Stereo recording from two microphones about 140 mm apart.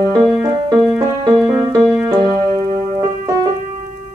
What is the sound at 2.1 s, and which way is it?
Keyboard, 35° right (ahead or behind).